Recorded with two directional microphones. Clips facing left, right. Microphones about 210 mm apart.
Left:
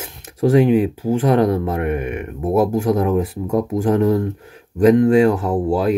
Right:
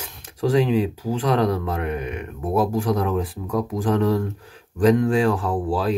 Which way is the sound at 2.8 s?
25° left (ahead or behind).